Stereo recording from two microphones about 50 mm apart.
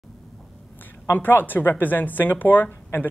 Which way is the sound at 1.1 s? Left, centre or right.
Left.